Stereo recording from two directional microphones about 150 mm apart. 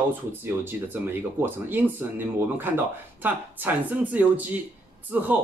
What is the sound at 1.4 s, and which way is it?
Speech, 15° right (ahead or behind).